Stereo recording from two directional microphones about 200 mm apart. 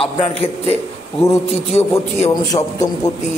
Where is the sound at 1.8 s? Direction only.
15° left (ahead or behind).